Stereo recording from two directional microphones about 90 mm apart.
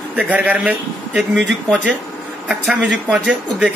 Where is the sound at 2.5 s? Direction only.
10° right (ahead or behind).